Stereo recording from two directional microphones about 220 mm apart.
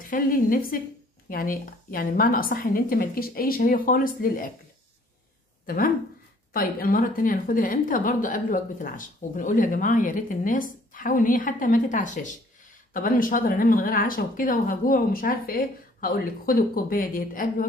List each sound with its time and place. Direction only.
0.1 s speech: 40° left (ahead or behind)
6.5 s speech: 40° left (ahead or behind)